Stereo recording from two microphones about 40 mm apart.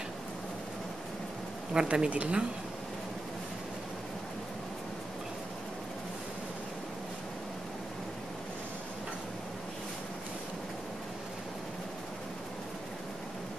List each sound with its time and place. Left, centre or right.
1.7 s speech: right